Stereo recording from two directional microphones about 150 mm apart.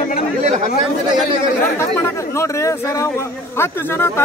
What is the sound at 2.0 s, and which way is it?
Speech, 20° left (ahead or behind).